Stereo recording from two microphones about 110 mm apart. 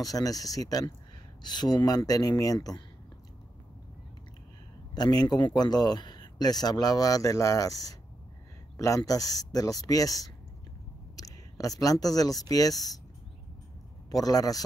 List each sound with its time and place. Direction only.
0.0 s speech: 35° left (ahead or behind)
4.9 s speech: 40° left (ahead or behind)
14.1 s speech: 35° left (ahead or behind)